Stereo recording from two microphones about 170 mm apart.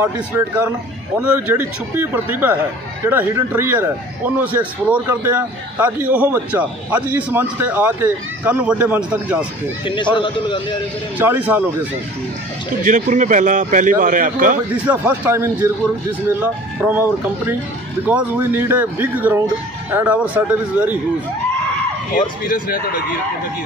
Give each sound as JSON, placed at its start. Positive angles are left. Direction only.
{"t": 1.3, "sound": "a man's voice", "side_deg": -10}
{"t": 9.8, "sound": "a man's voice", "side_deg": 30}
{"t": 11.1, "sound": "a man's voice", "side_deg": -10}
{"t": 12.8, "sound": "a man's voice", "side_deg": -50}
{"t": 14.9, "sound": "a man's voice", "side_deg": -10}
{"t": 22.1, "sound": "speech", "side_deg": 55}